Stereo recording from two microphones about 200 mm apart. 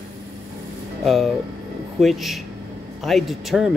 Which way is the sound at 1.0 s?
Centre (ahead or behind).